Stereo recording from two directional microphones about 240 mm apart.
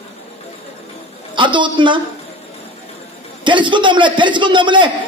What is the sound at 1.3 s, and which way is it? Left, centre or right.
Speech, centre.